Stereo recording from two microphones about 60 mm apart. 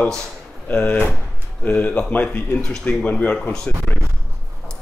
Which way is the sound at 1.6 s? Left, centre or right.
Left.